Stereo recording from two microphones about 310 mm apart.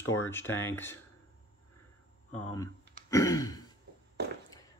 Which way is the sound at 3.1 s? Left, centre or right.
Centre.